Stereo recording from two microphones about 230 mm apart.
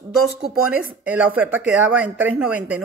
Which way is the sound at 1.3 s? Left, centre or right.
Centre.